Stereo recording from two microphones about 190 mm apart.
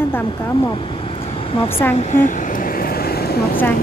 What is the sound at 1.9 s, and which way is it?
Vehicle, 45° left (ahead or behind).